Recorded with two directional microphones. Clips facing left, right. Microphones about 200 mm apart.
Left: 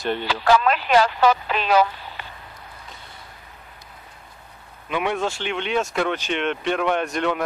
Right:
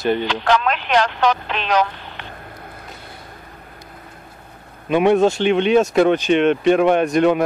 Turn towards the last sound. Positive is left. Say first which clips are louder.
# right 8 dB
turn(degrees=-15)  # may be behind; listen again after turning